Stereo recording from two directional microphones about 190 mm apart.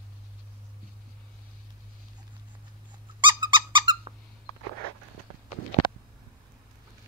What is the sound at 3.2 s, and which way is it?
Squeak, 25° right (ahead or behind).